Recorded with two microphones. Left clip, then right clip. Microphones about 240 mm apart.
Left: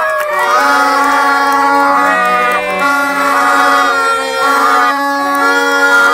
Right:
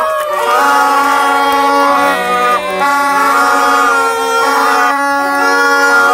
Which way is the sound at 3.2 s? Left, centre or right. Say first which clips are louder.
Right 1 dB; right.